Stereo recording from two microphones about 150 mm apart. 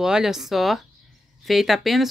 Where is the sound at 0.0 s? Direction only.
5° right (ahead or behind).